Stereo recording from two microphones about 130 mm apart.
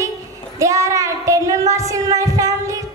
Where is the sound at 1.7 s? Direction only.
25° right (ahead or behind).